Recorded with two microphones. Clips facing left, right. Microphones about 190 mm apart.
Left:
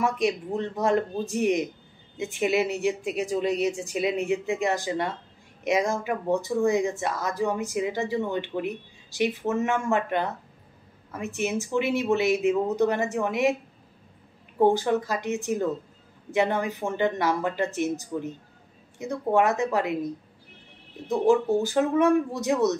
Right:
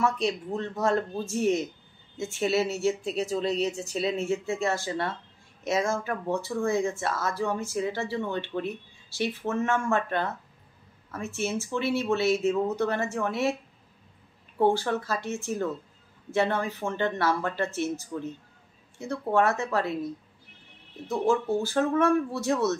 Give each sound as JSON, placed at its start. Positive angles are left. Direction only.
{"t": 0.0, "sound": "speech", "side_deg": 15}
{"t": 14.6, "sound": "speech", "side_deg": 15}
{"t": 21.1, "sound": "speech", "side_deg": 15}